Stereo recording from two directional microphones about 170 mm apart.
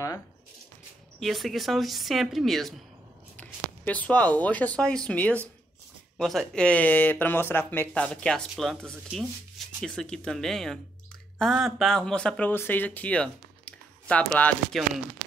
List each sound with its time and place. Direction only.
1.2 s speech: centre (ahead or behind)